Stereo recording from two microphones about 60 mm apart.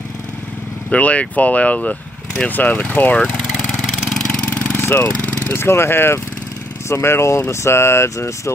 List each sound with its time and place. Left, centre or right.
0.8 s speech: left
4.4 s vehicle: left
5.5 s speech: left